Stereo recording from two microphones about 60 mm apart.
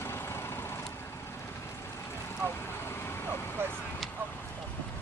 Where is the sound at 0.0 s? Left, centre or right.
Left.